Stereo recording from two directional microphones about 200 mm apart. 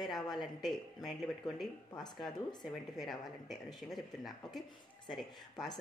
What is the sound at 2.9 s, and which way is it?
Speech, centre (ahead or behind).